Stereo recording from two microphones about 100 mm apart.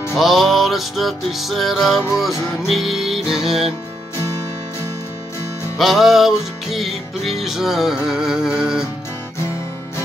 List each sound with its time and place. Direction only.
0.1 s music: centre (ahead or behind)
5.8 s music: centre (ahead or behind)